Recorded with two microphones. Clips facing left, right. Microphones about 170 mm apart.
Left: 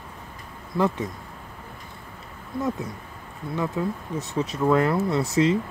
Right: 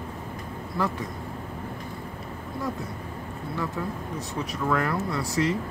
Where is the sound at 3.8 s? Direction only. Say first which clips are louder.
Left 4 dB; 20° left (ahead or behind).